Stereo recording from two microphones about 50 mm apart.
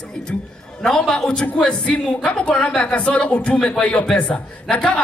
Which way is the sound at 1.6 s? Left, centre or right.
Left.